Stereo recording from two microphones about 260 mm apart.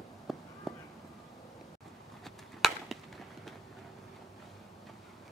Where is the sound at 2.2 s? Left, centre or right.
Centre.